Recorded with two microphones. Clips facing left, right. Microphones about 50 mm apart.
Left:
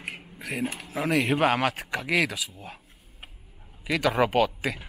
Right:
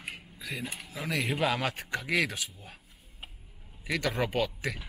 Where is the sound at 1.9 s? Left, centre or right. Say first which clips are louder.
Left 4 dB; left.